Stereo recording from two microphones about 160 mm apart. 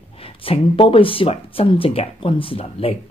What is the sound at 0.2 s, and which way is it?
Speech, 35° left (ahead or behind).